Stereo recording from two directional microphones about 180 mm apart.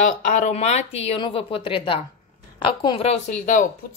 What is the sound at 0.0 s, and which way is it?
Speech, 45° left (ahead or behind).